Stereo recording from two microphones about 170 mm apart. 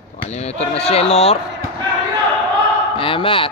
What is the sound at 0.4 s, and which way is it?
Speech, 35° left (ahead or behind).